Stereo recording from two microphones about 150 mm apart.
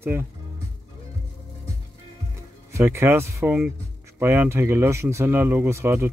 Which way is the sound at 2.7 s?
20° right (ahead or behind).